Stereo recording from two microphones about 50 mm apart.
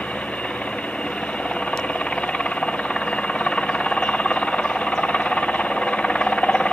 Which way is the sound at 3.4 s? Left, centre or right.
Left.